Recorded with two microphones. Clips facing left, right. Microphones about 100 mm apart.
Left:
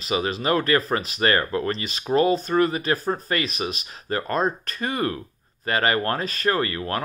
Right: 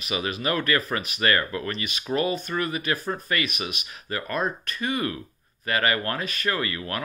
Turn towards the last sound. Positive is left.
turn(degrees=35)  # may be behind; listen again after turning